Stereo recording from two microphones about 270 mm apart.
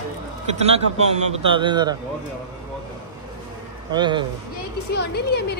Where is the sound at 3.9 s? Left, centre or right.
Centre.